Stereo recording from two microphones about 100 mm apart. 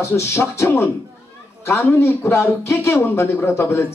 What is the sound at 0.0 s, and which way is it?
A man's voice, 30° left (ahead or behind).